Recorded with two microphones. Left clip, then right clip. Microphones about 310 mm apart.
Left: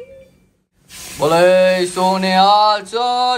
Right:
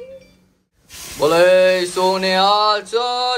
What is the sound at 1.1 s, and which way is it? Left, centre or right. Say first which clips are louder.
Mantra: left 1 dB; centre.